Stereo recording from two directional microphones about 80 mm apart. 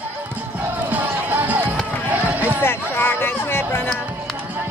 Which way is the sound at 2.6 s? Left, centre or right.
Left.